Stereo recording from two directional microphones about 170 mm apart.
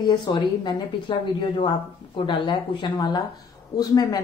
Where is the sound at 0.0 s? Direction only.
25° left (ahead or behind).